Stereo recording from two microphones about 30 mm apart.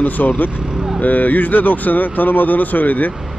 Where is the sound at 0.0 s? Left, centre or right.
Left.